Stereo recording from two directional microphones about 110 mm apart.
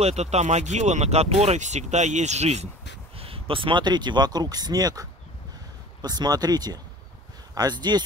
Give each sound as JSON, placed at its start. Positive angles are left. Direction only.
{"t": 0.0, "sound": "speech", "side_deg": -85}
{"t": 3.2, "sound": "speech", "side_deg": -60}
{"t": 6.0, "sound": "speech", "side_deg": -40}